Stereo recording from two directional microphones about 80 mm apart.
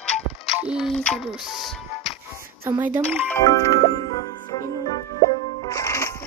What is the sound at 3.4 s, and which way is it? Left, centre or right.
Music, left.